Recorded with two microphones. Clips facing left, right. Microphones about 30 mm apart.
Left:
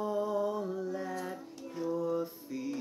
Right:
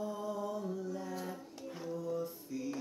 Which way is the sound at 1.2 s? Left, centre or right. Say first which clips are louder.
Left 3 dB; centre.